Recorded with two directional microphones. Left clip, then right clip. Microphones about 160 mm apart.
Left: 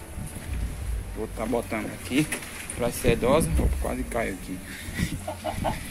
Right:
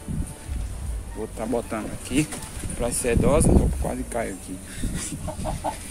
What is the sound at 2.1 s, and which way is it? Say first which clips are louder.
Speech: right 1 dB; centre (ahead or behind).